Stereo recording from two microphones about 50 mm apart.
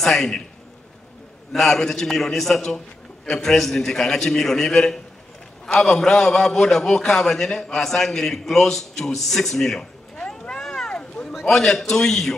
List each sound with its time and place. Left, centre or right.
0.0 s a man's voice: centre
1.5 s a man's voice: centre
10.1 s a sound: centre
11.3 s a man's voice: centre